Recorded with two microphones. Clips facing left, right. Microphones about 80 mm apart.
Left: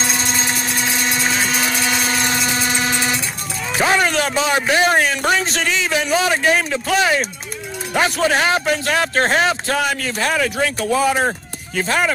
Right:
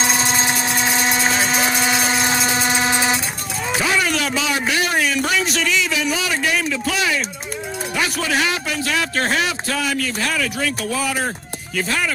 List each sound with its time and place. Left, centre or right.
0.2 s vehicle: right
1.0 s vehicle: centre
1.9 s a sound: centre
2.9 s vehicle: centre
3.8 s a sound: left
7.9 s a man's voice: left